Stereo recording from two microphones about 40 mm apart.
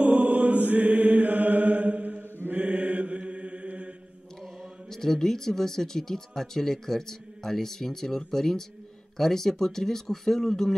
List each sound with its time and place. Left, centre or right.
0.0 s chant: right
2.5 s mantra: right
4.9 s speech: centre